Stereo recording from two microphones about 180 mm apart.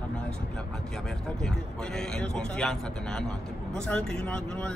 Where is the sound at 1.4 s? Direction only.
5° left (ahead or behind).